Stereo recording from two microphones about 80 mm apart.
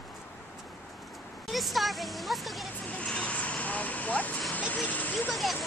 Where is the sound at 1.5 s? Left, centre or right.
Centre.